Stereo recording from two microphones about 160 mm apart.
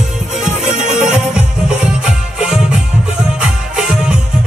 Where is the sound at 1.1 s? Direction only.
5° right (ahead or behind).